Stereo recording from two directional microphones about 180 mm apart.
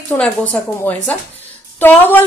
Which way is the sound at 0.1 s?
10° left (ahead or behind).